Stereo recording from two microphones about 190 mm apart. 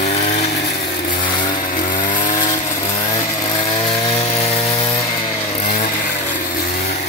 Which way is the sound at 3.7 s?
20° left (ahead or behind).